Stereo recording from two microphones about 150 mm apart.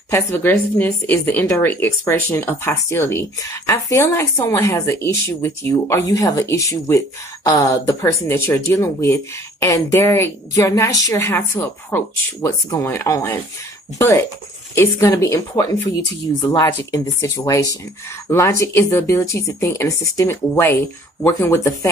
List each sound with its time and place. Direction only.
0.1 s a woman's voice: 15° left (ahead or behind)